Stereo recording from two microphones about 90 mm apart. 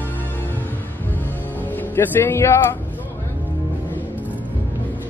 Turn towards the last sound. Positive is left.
turn(degrees=-20)  # may be behind; listen again after turning